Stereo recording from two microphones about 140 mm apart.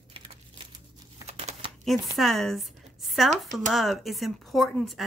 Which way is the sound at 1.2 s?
50° right (ahead or behind).